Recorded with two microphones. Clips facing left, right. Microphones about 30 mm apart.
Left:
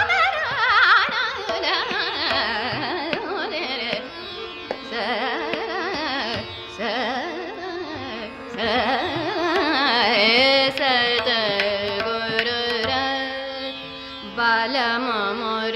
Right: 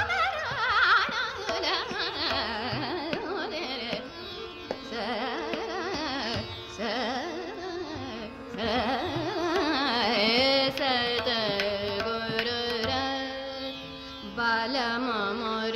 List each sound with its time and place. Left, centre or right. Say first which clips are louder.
0.0 s music: left 8 dB; left
1.5 s carnatic music: left 6 dB; left
6.2 s music: left 5 dB; left
8.5 s carnatic music: left 7 dB; left
12.4 s music: left 6 dB; left
14.3 s carnatic music: left 7 dB; left